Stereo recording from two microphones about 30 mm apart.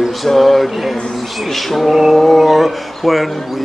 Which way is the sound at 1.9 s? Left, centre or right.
Centre.